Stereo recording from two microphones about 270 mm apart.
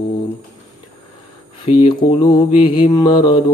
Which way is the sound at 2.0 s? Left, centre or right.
Centre.